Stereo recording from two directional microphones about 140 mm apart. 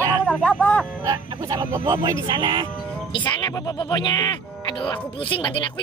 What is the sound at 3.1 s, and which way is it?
Speech, 30° left (ahead or behind).